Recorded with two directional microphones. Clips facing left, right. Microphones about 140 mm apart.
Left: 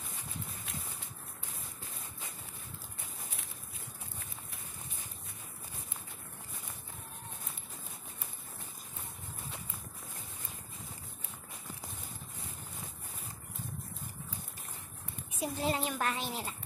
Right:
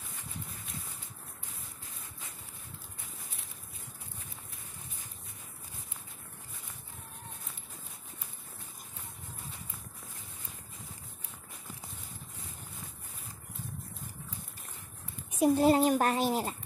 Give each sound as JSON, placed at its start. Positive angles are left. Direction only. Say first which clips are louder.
{"t": 15.3, "sound": "a child's voice", "louder": "right 10 dB", "side_deg": -45}